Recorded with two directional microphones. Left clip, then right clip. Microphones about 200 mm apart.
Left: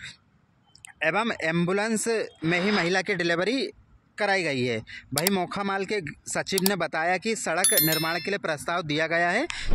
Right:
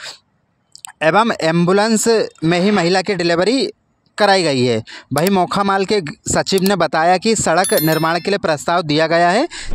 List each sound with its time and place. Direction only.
0.8 s speech: 50° right (ahead or behind)